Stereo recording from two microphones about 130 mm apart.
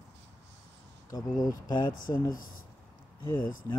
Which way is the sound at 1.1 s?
30° left (ahead or behind).